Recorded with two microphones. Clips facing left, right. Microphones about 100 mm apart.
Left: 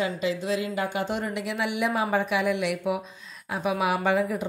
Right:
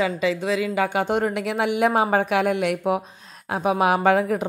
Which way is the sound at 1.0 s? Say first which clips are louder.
Right 6 dB; 55° right (ahead or behind).